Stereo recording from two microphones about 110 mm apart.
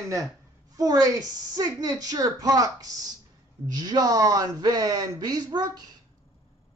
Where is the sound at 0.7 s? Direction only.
35° right (ahead or behind).